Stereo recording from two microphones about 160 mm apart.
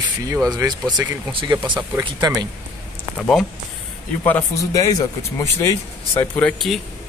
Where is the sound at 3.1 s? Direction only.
5° left (ahead or behind).